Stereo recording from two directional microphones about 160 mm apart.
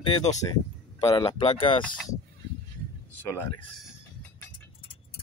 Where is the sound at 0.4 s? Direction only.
20° left (ahead or behind).